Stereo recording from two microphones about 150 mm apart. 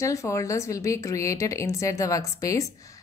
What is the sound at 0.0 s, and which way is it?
A woman's voice, 20° left (ahead or behind).